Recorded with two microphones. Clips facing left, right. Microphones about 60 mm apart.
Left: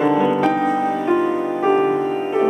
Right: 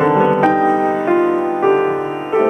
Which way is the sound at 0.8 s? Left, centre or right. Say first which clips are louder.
Right 4 dB; right.